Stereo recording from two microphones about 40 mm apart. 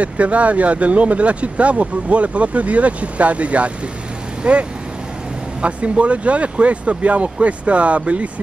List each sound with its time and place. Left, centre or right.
0.0 s speech: right